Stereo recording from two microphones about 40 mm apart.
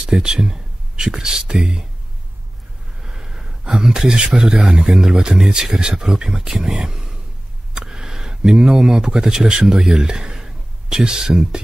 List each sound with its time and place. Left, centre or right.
0.1 s speech: centre
3.0 s a sound: centre
4.4 s speech: right
4.9 s speech: centre